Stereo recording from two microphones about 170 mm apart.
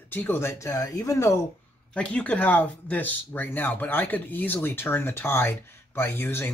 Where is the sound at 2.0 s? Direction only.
5° left (ahead or behind).